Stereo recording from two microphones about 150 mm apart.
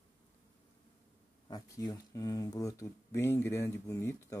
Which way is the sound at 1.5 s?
25° left (ahead or behind).